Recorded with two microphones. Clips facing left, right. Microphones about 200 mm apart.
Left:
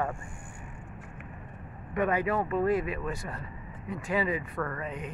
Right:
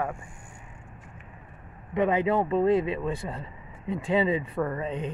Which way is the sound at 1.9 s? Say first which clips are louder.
Right 4 dB; 20° right (ahead or behind).